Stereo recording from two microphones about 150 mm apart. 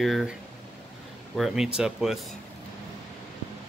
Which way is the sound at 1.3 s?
Centre (ahead or behind).